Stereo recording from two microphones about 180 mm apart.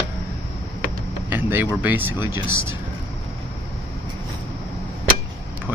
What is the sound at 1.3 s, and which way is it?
Speech, 10° right (ahead or behind).